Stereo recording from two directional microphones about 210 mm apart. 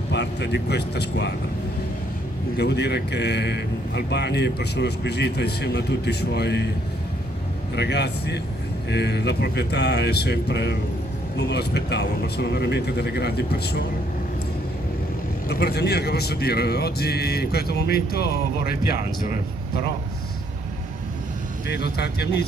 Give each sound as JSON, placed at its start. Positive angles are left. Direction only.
{"t": 0.1, "sound": "speech", "side_deg": 55}
{"t": 2.5, "sound": "speech", "side_deg": 50}
{"t": 7.7, "sound": "speech", "side_deg": 55}
{"t": 15.4, "sound": "speech", "side_deg": 50}
{"t": 21.6, "sound": "speech", "side_deg": 50}